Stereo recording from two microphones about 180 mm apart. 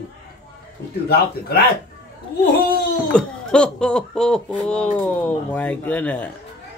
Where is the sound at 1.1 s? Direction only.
60° left (ahead or behind).